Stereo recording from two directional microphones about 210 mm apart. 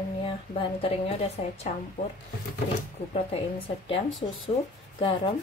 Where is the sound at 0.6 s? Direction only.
25° left (ahead or behind).